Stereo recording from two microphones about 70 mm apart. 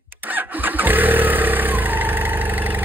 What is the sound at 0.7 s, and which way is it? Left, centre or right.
Vehicle, right.